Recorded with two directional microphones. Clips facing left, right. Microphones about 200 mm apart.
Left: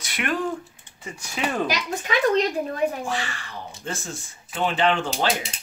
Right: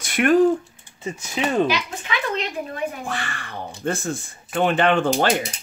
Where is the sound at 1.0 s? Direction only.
25° right (ahead or behind).